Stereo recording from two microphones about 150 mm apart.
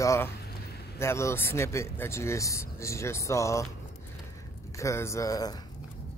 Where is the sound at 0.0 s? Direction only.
20° left (ahead or behind).